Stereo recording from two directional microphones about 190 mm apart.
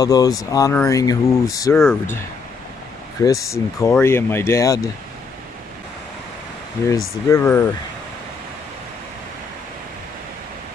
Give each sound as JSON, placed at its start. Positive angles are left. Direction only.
{"t": 0.0, "sound": "speech", "side_deg": 20}
{"t": 3.2, "sound": "speech", "side_deg": 15}
{"t": 7.2, "sound": "speech", "side_deg": 15}